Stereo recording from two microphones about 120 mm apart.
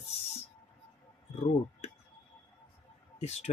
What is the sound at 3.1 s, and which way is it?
Speech, 65° left (ahead or behind).